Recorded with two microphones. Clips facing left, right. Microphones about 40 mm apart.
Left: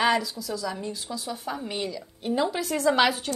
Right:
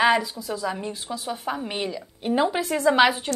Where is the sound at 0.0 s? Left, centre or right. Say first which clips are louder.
Right 3 dB; right.